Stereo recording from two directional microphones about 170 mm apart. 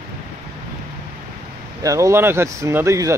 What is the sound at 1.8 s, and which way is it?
Speech, 15° right (ahead or behind).